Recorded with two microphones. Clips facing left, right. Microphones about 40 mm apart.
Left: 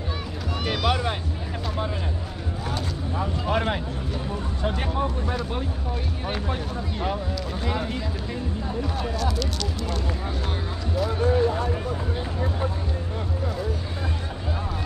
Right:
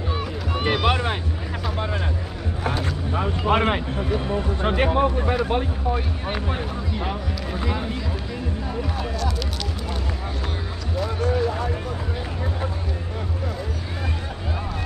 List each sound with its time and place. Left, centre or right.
0.5 s boat: right
2.8 s speech: right
5.9 s speech: centre